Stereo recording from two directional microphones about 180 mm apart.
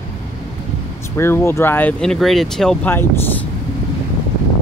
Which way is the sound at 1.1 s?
15° left (ahead or behind).